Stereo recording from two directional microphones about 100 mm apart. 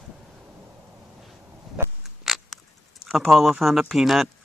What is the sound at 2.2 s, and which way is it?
Patter, centre (ahead or behind).